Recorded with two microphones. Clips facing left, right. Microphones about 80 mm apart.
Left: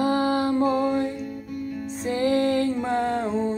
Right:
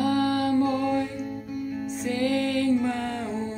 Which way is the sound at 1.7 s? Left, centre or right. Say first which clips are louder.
Right 1 dB; centre.